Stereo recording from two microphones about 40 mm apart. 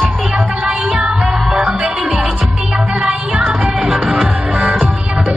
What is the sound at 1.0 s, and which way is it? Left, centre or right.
Music, right.